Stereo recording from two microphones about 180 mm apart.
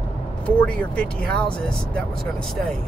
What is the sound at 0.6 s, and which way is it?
Speech, 5° left (ahead or behind).